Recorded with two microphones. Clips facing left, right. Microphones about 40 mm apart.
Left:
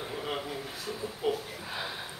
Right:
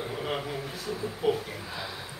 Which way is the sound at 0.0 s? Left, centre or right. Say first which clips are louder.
Right 3 dB; centre.